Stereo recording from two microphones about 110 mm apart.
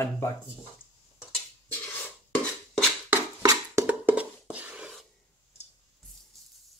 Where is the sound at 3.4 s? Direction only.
30° right (ahead or behind).